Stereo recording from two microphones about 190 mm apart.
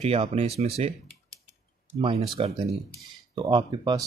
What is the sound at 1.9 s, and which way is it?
Speech, 30° right (ahead or behind).